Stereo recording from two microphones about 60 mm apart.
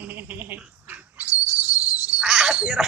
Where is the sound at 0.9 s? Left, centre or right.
Right.